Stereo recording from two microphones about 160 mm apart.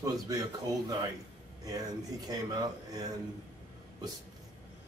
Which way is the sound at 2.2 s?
25° right (ahead or behind).